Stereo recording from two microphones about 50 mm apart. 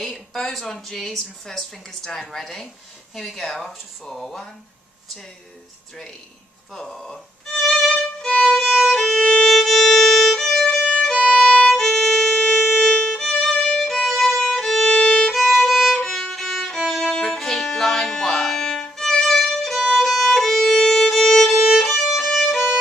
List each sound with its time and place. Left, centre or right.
0.0 s speech: centre
6.7 s violin: centre
9.5 s violin: centre
13.1 s violin: centre
14.9 s violin: centre
15.3 s violin: centre
21.8 s music: centre
22.2 s violin: centre